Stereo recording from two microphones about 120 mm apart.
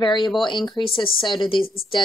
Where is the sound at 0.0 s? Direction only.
40° left (ahead or behind).